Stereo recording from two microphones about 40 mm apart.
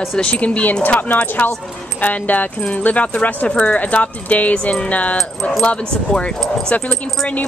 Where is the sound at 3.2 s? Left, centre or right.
Left.